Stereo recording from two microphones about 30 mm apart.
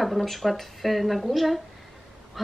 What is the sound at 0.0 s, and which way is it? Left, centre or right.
Speech, centre.